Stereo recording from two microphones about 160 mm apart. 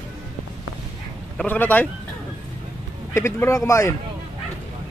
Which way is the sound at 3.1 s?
15° left (ahead or behind).